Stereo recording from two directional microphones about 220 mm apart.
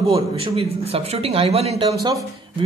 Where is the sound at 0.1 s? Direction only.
25° right (ahead or behind).